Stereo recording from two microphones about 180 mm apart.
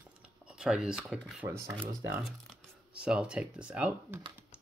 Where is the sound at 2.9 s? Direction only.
5° right (ahead or behind).